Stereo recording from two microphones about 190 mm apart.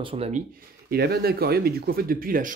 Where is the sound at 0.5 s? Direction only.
55° right (ahead or behind).